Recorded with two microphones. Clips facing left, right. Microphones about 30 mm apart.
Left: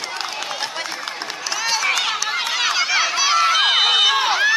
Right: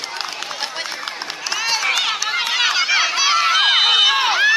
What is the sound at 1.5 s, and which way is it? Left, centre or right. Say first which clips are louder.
Run: right 1 dB; centre.